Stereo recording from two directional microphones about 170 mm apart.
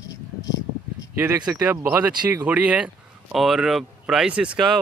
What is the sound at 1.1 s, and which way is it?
A man's voice, 10° right (ahead or behind).